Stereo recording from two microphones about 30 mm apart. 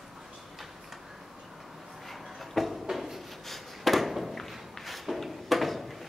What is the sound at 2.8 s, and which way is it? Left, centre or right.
Rub, centre.